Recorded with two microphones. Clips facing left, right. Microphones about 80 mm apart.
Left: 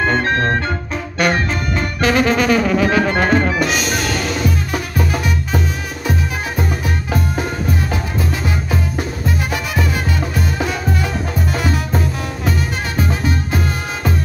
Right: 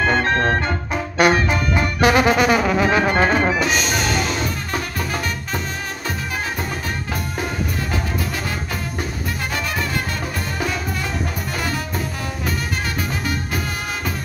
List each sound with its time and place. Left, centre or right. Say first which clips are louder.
1.1 s brass instrument: right 1 dB; centre
3.5 s music: left 2 dB; centre
4.7 s music: left 4 dB; centre
10.3 s music: left 4 dB; centre